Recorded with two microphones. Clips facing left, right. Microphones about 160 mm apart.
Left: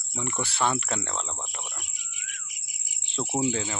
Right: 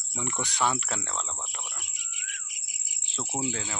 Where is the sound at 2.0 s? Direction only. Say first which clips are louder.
Even; 90° right.